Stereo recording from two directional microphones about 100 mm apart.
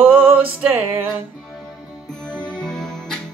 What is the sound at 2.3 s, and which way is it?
Music, 10° left (ahead or behind).